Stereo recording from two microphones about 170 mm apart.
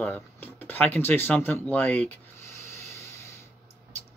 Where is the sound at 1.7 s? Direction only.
10° left (ahead or behind).